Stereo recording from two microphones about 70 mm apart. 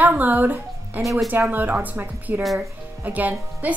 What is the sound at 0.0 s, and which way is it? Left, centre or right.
Speech, right.